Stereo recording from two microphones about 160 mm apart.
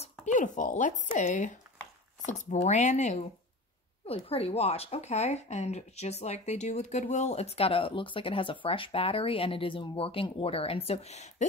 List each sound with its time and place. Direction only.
0.2 s speech: 50° left (ahead or behind)
4.1 s speech: 35° left (ahead or behind)